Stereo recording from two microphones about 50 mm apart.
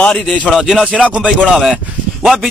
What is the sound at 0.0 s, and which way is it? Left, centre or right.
Speech, centre.